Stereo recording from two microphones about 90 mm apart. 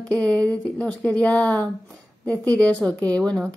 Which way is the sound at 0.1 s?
15° left (ahead or behind).